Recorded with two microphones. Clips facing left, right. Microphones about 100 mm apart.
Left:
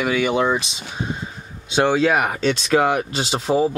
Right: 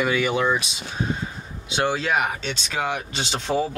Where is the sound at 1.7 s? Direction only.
30° left (ahead or behind).